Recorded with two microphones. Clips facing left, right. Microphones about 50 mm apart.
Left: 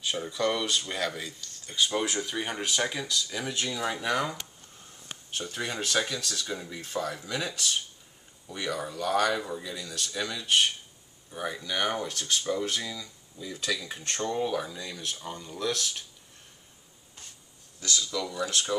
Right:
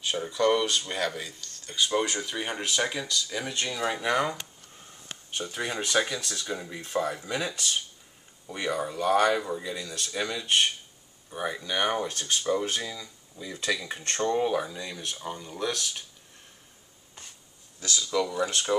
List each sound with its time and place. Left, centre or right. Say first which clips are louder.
0.0 s speech: right 3 dB; centre
8.5 s speech: right 3 dB; right; by 10.1 s centre
10.3 s speech: even; right
18.1 s speech: right 8 dB; right